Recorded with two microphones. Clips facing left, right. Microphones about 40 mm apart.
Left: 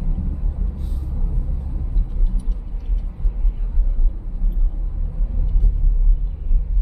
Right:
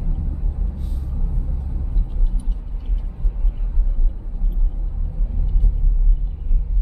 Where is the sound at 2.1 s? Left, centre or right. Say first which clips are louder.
Left 1 dB; right.